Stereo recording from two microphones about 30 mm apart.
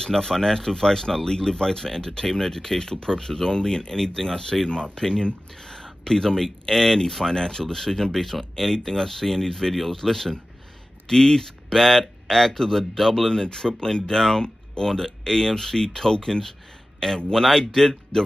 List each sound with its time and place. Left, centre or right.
0.0 s speech: centre
5.5 s a sound: centre
6.0 s speech: centre
7.7 s speech: centre
13.3 s speech: centre
14.0 s speech: centre